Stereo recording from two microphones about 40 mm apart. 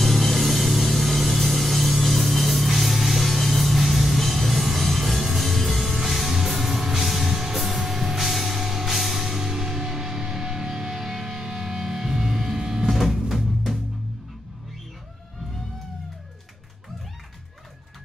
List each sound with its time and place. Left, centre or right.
0.0 s music: centre
12.9 s cupboard open or close: centre